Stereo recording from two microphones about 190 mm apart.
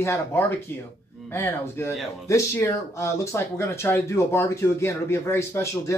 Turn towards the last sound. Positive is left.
turn(degrees=15)  # may be behind; listen again after turning